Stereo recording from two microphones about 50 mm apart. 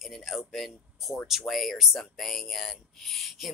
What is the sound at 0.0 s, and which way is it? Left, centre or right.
Speech, centre.